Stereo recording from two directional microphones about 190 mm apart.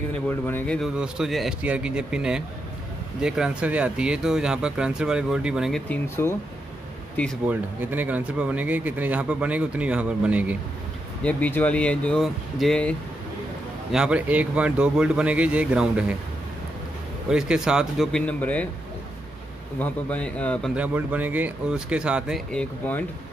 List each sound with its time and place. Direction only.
0.3 s speech: 10° left (ahead or behind)
0.9 s speech: 5° right (ahead or behind)
5.9 s speech: 15° left (ahead or behind)
7.4 s speech: 10° right (ahead or behind)
11.2 s speech: 10° left (ahead or behind)
13.9 s speech: 5° right (ahead or behind)
17.3 s speech: 5° right (ahead or behind)
19.8 s speech: 5° left (ahead or behind)
20.7 s speech: 5° right (ahead or behind)